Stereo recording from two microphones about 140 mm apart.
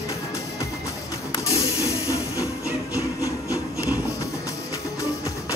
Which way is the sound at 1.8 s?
20° left (ahead or behind).